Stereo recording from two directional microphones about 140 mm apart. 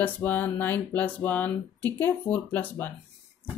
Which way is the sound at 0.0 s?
10° left (ahead or behind).